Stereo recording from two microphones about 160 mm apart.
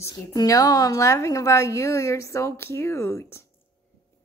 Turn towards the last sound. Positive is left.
turn(degrees=15)  # may be behind; listen again after turning